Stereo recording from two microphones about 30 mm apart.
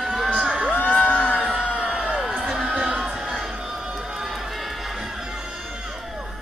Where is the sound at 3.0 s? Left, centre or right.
Centre.